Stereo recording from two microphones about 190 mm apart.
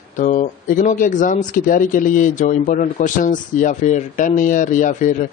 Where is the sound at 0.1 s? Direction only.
40° left (ahead or behind).